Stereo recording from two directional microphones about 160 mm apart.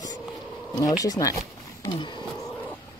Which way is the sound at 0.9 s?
20° left (ahead or behind).